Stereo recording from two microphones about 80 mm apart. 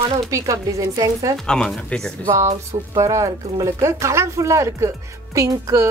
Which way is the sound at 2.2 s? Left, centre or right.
Right.